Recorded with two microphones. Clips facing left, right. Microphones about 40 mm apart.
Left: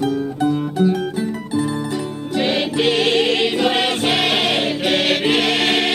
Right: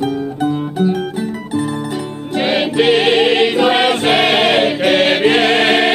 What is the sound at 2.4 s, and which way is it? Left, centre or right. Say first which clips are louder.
Choir: right 5 dB; right.